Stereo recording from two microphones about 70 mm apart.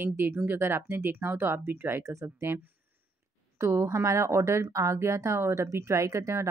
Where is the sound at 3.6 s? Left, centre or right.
Right.